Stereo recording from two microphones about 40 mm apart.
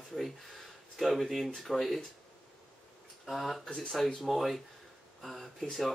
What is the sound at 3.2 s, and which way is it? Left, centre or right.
Speech, centre.